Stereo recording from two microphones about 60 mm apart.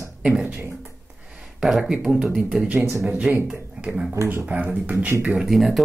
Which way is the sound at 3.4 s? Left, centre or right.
Centre.